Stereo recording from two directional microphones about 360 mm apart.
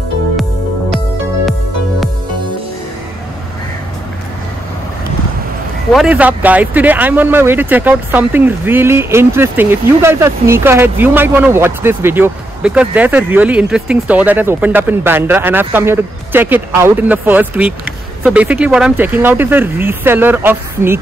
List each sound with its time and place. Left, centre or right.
5.9 s speech: centre